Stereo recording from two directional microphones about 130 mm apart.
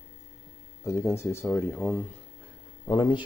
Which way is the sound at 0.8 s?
20° left (ahead or behind).